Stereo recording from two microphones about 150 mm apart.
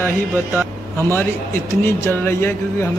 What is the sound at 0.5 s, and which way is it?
Speech, 10° right (ahead or behind).